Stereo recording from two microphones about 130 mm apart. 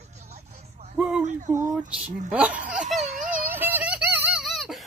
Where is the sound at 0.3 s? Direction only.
55° right (ahead or behind).